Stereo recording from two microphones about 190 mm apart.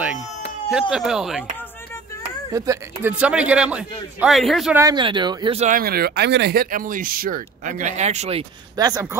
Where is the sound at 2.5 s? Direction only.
15° right (ahead or behind); by 4.7 s centre (ahead or behind).